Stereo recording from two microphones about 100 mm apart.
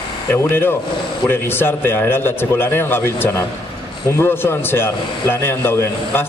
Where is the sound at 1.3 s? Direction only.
20° left (ahead or behind).